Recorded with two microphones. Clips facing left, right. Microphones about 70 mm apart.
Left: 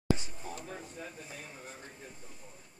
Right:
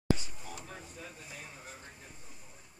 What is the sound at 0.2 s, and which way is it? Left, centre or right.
Air conditioning, left.